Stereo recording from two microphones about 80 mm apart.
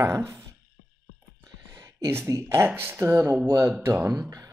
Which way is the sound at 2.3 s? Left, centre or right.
Right.